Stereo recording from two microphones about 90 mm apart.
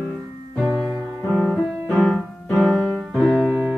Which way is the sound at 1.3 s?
5° left (ahead or behind).